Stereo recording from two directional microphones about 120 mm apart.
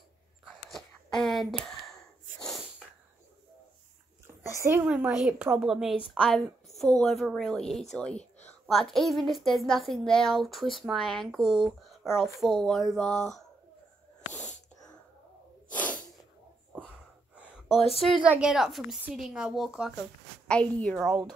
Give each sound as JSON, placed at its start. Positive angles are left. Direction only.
{"t": 0.7, "sound": "a sound", "side_deg": 5}
{"t": 4.6, "sound": "a woman's voice", "side_deg": -20}
{"t": 4.8, "sound": "a woman's voice", "side_deg": -5}
{"t": 15.7, "sound": "sneeze", "side_deg": 15}
{"t": 17.4, "sound": "a sound", "side_deg": -5}
{"t": 18.2, "sound": "a woman's voice", "side_deg": -10}
{"t": 20.4, "sound": "a woman's voice", "side_deg": 10}
{"t": 20.9, "sound": "a woman's voice", "side_deg": -5}